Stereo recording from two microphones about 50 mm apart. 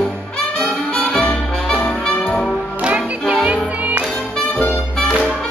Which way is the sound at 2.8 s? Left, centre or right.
Right.